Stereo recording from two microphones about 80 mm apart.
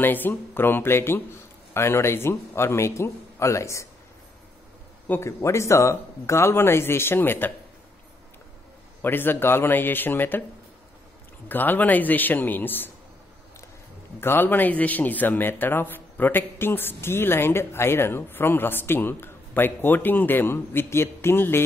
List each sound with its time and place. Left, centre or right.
0.0 s a man's voice: left
5.2 s a man's voice: left
9.0 s speech: left
11.4 s speech: left
14.2 s speech: left